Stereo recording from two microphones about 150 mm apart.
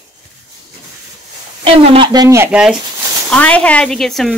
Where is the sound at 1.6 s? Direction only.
35° right (ahead or behind).